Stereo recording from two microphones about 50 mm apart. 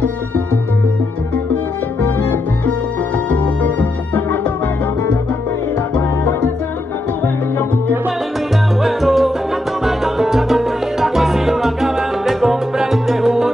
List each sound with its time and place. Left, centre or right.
2.0 s salsa music: left
3.3 s music: left
8.8 s salsa music: centre